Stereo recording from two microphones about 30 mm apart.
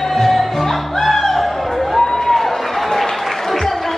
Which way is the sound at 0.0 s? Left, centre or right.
Centre.